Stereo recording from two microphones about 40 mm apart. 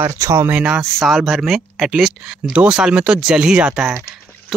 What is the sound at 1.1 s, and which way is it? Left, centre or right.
Speech, centre.